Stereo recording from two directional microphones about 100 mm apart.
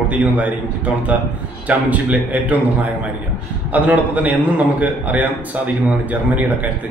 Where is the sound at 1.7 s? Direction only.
15° right (ahead or behind).